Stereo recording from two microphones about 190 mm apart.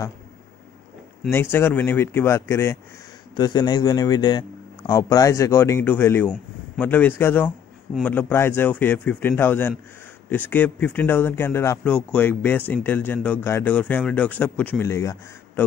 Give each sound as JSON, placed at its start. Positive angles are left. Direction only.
{"t": 1.3, "sound": "speech", "side_deg": 10}